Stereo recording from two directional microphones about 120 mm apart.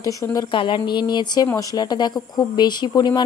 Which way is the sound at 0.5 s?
45° left (ahead or behind).